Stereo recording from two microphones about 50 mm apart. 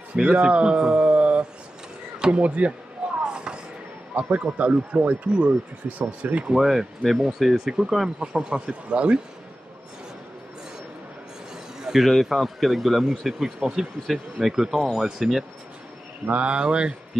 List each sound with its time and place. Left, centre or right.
0.1 s speech: centre
3.2 s a sound: centre
4.1 s a man's voice: right
6.3 s speech: centre
7.0 s a man's voice: centre
8.2 s speech: centre
11.8 s a man's voice: centre
13.3 s speech: centre
16.3 s speech: right